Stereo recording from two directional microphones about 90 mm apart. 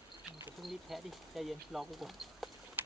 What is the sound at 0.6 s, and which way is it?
Speech, centre (ahead or behind).